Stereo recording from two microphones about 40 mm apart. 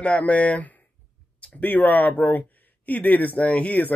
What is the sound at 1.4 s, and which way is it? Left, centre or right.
Speech, left.